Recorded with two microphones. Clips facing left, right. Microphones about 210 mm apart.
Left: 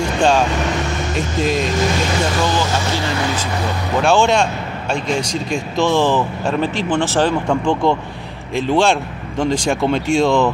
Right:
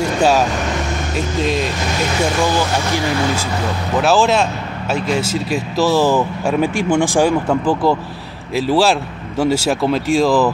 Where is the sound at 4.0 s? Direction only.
5° right (ahead or behind).